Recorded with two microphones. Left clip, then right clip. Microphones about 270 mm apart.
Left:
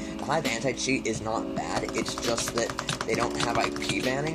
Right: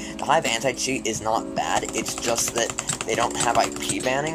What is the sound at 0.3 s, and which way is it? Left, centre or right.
Speech, right.